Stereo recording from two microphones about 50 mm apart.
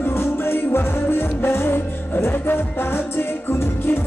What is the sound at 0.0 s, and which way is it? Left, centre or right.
Music, left.